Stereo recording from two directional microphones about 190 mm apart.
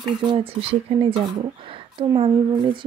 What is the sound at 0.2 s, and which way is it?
Speech, 25° right (ahead or behind).